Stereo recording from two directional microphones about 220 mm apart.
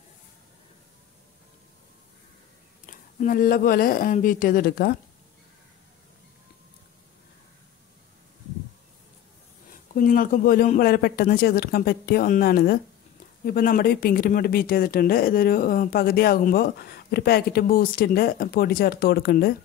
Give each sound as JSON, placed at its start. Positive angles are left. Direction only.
{"t": 2.9, "sound": "speech", "side_deg": 40}
{"t": 9.9, "sound": "speech", "side_deg": 40}